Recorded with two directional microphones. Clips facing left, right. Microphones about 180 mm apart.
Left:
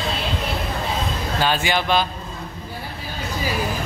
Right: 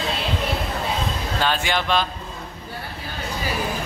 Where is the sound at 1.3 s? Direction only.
5° left (ahead or behind).